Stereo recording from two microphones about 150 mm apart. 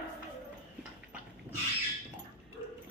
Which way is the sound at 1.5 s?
10° right (ahead or behind).